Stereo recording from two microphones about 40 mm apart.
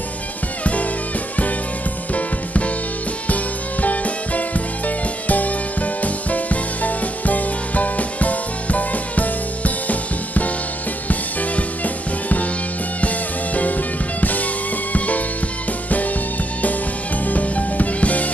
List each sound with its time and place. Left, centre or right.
2.1 s music: left
3.8 s music: left
14.2 s music: left
17.3 s music: left